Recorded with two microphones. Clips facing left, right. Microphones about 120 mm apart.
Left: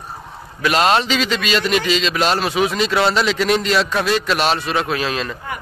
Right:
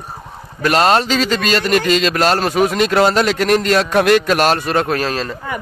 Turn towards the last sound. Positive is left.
turn(degrees=-40)  # may be behind; listen again after turning